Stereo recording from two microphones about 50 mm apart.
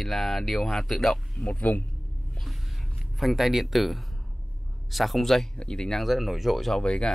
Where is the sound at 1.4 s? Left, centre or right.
Left.